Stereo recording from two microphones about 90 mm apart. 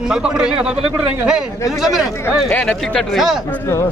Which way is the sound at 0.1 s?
10° right (ahead or behind).